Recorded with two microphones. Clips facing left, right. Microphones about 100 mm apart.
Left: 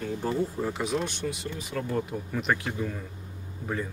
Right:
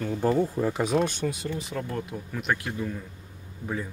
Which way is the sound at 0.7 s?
50° right (ahead or behind).